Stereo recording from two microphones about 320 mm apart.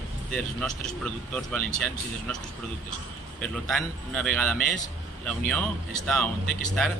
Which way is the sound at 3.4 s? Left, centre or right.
Centre.